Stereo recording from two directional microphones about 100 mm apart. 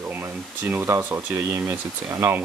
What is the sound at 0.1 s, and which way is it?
Speech, 20° right (ahead or behind).